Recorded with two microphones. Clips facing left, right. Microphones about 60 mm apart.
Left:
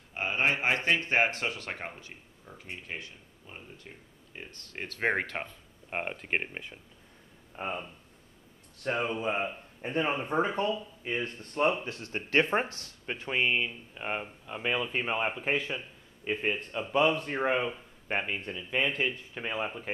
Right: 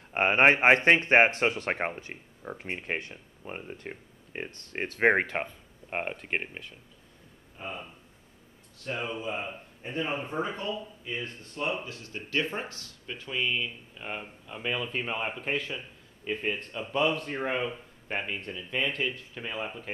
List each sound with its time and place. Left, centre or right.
0.1 s speech: right
4.5 s speech: right
5.9 s speech: centre
7.5 s speech: left
8.8 s speech: left
13.7 s speech: left